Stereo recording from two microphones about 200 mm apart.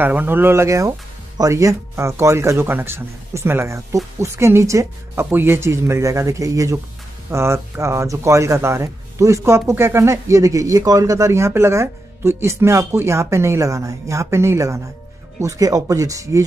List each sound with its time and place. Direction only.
0.0 s a man's voice: 10° right (ahead or behind)